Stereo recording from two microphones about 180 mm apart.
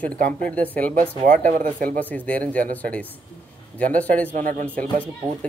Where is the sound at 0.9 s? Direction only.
50° right (ahead or behind).